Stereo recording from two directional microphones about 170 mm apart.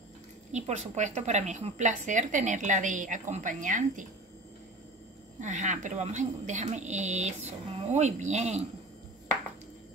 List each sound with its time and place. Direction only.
0.5 s a woman's voice: 40° right (ahead or behind)
5.4 s a woman's voice: 45° right (ahead or behind)